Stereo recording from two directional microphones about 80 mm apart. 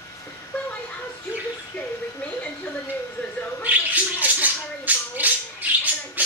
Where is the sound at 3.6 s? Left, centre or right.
Centre.